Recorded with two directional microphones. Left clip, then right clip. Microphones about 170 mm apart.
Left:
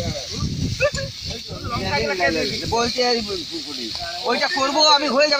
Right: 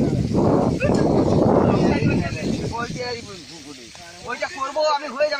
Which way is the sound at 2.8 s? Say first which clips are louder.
Left 8 dB; 30° right (ahead or behind).